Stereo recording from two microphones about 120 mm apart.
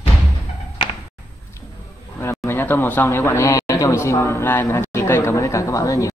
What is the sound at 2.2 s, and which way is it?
A man's voice, 20° left (ahead or behind).